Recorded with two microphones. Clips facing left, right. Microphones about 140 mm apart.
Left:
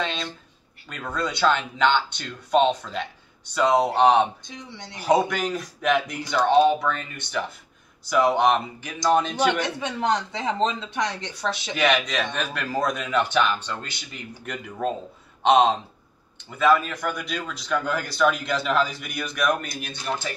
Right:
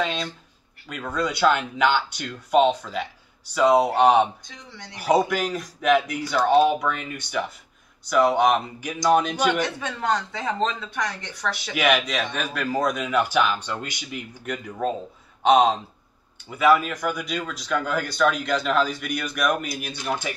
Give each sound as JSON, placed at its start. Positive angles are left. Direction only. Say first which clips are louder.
{"t": 0.0, "sound": "speech", "louder": "right 2 dB", "side_deg": -5}
{"t": 4.5, "sound": "speech", "louder": "left 3 dB", "side_deg": 20}
{"t": 5.0, "sound": "speech", "louder": "even", "side_deg": -5}
{"t": 8.0, "sound": "speech", "louder": "right 1 dB", "side_deg": 0}
{"t": 9.5, "sound": "speech", "louder": "even", "side_deg": 20}
{"t": 11.7, "sound": "a man's voice", "louder": "right 1 dB", "side_deg": -5}
{"t": 14.4, "sound": "speech", "louder": "right 1 dB", "side_deg": 0}